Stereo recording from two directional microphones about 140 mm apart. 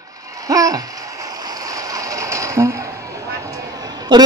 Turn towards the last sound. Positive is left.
turn(degrees=-30)  # may be behind; listen again after turning